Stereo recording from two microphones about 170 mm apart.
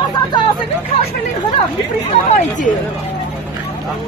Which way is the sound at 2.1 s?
40° left (ahead or behind).